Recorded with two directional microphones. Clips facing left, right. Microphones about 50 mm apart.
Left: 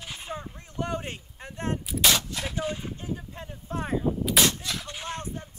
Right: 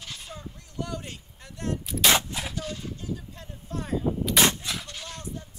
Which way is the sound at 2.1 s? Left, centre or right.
Right.